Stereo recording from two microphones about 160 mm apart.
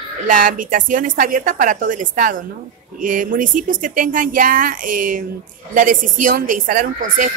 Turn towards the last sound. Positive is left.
turn(degrees=-60)  # may be behind; listen again after turning